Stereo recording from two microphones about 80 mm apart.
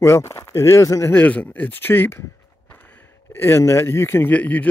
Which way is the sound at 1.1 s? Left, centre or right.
Centre.